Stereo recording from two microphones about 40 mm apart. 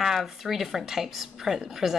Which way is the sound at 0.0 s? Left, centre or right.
Centre.